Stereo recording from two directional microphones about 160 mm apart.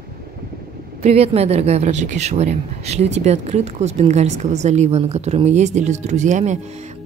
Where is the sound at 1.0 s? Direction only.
40° right (ahead or behind).